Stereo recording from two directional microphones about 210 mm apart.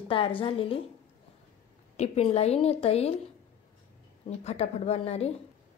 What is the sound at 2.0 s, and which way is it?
A woman's voice, 30° left (ahead or behind).